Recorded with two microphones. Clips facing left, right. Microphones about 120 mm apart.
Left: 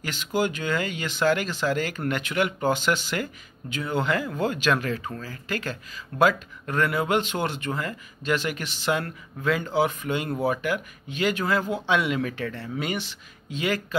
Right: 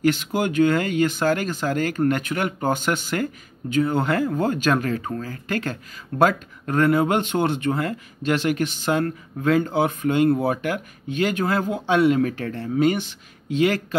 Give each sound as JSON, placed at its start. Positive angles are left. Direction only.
{"t": 0.0, "sound": "speech", "side_deg": -55}